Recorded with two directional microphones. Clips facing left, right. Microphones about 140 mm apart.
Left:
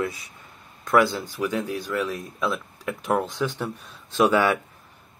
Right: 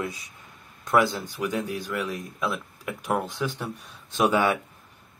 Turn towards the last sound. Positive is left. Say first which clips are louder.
# left 2 dB
turn(degrees=-15)  # may be behind; listen again after turning